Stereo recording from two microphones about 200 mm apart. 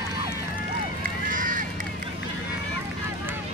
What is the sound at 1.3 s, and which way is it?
Run, 40° right (ahead or behind).